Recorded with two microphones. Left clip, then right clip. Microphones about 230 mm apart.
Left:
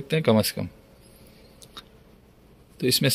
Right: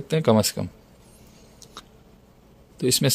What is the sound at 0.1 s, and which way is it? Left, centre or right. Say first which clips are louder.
Speech: right 2 dB; centre.